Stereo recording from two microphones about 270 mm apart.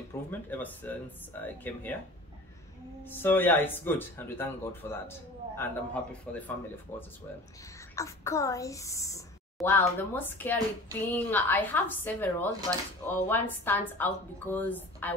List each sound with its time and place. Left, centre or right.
0.1 s speech: centre
3.1 s speech: centre
7.9 s speech: centre